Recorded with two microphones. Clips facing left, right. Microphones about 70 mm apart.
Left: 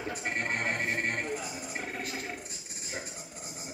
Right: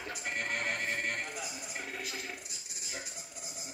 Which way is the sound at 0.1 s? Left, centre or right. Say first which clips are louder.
Left 3 dB; left.